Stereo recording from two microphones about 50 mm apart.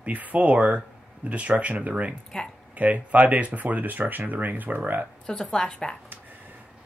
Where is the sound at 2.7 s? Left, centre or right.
Right.